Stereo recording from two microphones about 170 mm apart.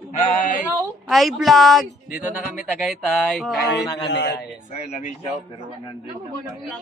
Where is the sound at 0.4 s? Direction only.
50° left (ahead or behind).